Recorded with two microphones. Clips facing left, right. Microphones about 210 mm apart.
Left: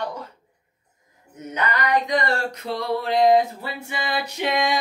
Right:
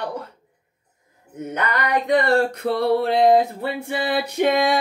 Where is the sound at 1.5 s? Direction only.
55° right (ahead or behind).